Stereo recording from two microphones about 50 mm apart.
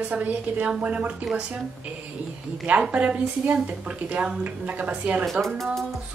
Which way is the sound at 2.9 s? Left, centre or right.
Right.